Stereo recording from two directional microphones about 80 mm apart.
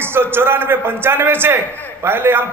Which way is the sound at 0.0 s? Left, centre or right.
Right.